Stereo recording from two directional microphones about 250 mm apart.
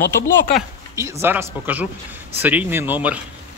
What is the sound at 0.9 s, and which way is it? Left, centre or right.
Speech, centre.